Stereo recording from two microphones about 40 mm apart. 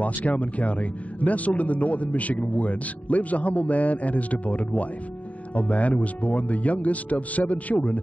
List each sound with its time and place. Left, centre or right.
0.0 s speech: left